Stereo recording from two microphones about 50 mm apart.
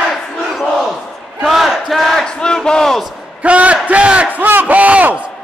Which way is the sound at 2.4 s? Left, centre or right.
Centre.